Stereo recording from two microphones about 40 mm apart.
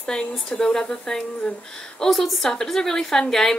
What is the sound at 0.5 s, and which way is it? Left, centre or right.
A woman's voice, centre.